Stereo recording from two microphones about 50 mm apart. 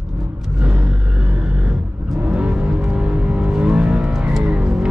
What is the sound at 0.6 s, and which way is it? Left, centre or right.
Vehicle, centre.